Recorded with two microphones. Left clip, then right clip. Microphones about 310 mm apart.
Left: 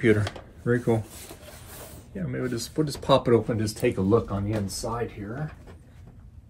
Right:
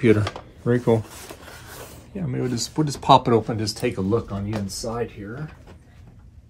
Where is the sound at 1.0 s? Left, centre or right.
Centre.